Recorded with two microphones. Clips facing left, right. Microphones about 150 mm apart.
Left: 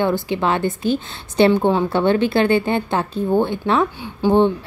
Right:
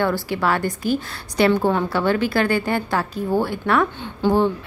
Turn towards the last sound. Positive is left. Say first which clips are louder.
# left 3 dB
turn(degrees=20)  # may be behind; listen again after turning